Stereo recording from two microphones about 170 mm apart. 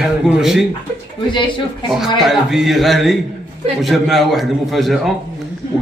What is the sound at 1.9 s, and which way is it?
A man's voice, centre (ahead or behind).